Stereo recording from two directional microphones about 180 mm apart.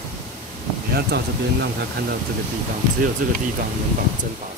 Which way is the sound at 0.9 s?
65° right (ahead or behind).